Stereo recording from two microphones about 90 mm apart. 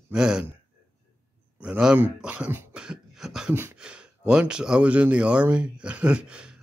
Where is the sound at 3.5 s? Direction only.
25° right (ahead or behind).